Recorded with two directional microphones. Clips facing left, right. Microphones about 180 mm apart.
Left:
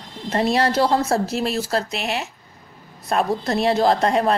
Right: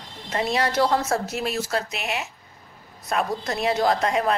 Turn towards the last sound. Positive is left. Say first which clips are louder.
# left 4 dB
turn(degrees=35)  # may be behind; listen again after turning